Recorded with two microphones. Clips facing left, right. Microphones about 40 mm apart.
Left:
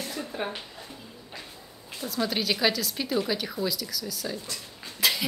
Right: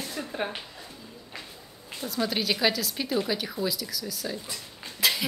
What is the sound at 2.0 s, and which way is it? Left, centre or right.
A woman's voice, centre.